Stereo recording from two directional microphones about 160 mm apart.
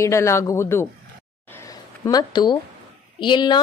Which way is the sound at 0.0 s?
20° left (ahead or behind).